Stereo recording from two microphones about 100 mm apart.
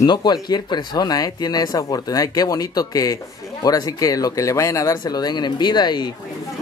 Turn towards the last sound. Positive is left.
turn(degrees=45)  # may be behind; listen again after turning